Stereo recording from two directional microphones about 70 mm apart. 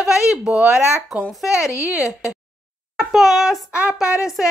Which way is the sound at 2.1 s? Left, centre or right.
Centre.